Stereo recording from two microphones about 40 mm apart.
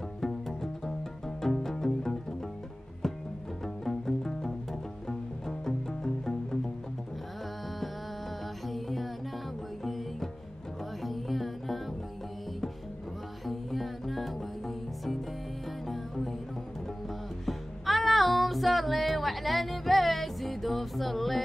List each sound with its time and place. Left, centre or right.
0.2 s music: centre
3.6 s music: centre
8.6 s music: centre
13.5 s music: centre
17.5 s music: centre